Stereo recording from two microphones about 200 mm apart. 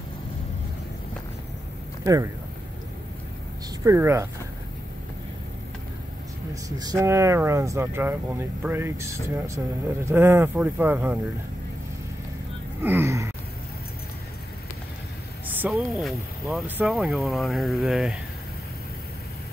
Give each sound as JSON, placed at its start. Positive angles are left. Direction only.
{"t": 2.0, "sound": "speech", "side_deg": -15}
{"t": 3.8, "sound": "speech", "side_deg": -15}
{"t": 6.5, "sound": "speech", "side_deg": -20}
{"t": 12.8, "sound": "speech", "side_deg": -10}
{"t": 15.4, "sound": "speech", "side_deg": -10}